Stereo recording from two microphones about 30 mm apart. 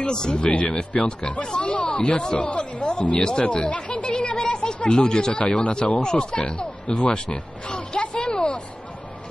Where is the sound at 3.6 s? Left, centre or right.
Left.